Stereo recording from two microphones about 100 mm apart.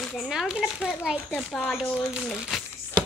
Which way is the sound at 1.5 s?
10° left (ahead or behind).